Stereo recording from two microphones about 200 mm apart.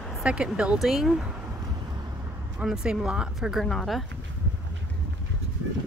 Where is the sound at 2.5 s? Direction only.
5° right (ahead or behind).